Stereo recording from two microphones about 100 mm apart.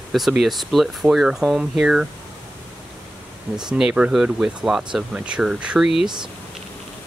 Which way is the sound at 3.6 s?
5° right (ahead or behind).